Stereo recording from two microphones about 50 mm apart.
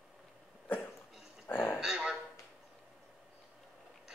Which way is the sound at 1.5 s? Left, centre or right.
Left.